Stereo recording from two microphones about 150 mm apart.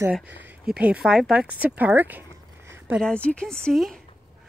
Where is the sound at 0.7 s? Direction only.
10° right (ahead or behind).